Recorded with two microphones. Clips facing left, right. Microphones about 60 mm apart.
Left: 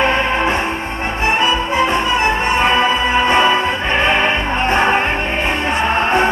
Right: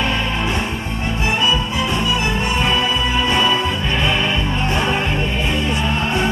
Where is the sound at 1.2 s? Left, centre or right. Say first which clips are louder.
Left 4 dB; left.